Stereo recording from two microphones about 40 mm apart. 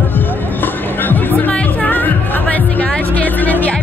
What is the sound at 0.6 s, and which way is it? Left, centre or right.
Music, left.